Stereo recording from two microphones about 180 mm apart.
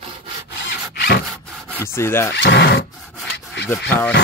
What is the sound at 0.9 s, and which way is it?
Rub, 65° left (ahead or behind).